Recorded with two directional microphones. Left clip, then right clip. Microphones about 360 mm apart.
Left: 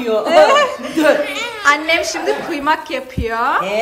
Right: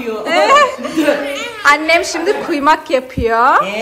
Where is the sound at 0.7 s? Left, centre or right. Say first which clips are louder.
Left 1 dB; left.